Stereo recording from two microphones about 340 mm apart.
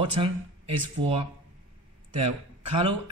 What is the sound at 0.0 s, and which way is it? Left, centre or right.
A man's voice, centre.